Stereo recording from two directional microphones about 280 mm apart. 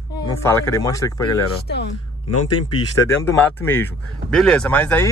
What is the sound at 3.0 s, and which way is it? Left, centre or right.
Speech, centre.